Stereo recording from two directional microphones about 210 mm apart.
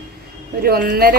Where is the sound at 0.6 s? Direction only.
45° right (ahead or behind).